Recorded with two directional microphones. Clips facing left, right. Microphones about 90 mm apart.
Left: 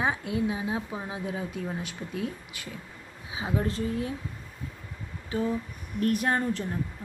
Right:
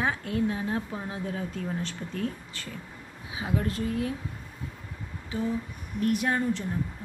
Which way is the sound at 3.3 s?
25° left (ahead or behind).